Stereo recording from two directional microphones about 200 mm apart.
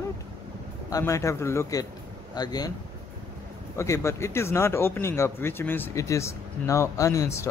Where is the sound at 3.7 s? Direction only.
15° left (ahead or behind).